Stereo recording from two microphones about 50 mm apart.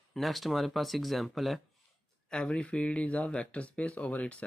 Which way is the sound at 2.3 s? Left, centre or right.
Centre.